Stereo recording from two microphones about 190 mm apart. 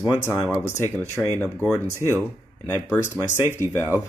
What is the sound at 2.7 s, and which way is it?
Speech, 10° left (ahead or behind).